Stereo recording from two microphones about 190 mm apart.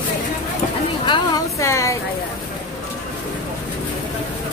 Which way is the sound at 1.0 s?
20° left (ahead or behind).